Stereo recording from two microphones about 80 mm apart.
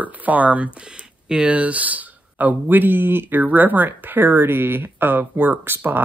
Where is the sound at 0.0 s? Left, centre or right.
Right.